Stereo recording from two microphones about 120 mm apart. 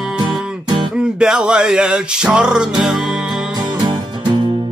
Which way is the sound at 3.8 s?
35° right (ahead or behind).